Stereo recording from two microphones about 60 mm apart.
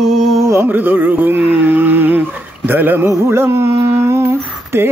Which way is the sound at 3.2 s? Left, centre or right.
Right.